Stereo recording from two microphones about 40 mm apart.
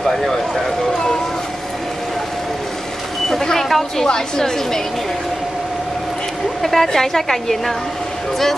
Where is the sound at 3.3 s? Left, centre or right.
Centre.